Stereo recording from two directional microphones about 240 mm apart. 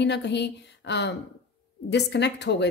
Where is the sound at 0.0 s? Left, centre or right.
Left.